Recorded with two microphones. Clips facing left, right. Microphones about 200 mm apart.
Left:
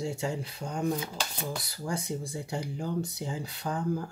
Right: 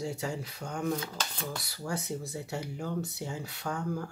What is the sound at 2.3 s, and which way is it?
Speech, 30° left (ahead or behind).